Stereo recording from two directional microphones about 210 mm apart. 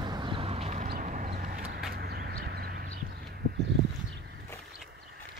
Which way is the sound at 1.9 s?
45° right (ahead or behind).